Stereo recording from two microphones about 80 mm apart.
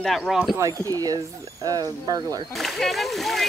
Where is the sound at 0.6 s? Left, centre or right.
Right.